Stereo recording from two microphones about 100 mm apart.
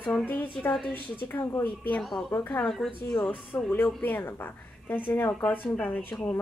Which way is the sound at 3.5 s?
25° left (ahead or behind).